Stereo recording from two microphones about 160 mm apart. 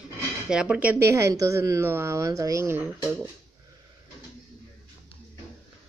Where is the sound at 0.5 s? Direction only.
5° right (ahead or behind).